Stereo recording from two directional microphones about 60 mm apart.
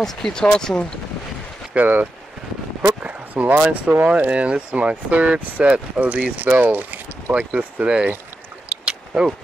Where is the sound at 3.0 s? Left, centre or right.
Right.